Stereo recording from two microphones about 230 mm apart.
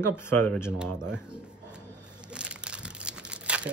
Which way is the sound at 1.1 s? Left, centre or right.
Centre.